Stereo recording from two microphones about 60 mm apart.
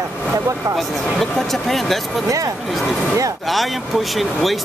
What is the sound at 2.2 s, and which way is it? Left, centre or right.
Speech, right.